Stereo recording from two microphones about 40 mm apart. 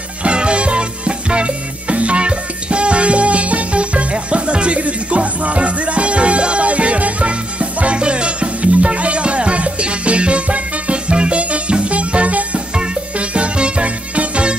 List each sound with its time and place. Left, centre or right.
0.2 s music: right